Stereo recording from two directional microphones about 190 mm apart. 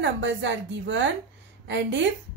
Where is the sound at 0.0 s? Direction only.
70° right (ahead or behind).